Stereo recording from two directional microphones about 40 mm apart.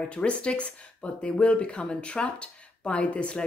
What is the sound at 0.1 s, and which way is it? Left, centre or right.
Speech, left.